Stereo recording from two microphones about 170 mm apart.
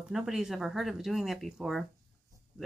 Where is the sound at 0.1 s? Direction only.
5° right (ahead or behind).